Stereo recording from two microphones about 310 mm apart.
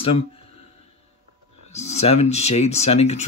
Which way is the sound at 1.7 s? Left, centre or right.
Left.